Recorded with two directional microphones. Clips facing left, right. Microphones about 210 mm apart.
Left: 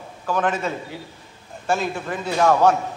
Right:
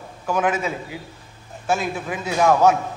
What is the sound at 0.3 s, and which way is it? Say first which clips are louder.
A man's voice: right 1 dB; 5° right (ahead or behind).